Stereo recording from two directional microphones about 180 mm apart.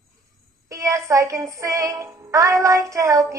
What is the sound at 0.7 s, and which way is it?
A woman's voice, 15° right (ahead or behind).